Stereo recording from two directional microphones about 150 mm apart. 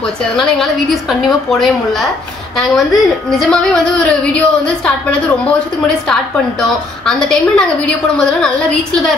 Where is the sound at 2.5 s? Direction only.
Centre (ahead or behind).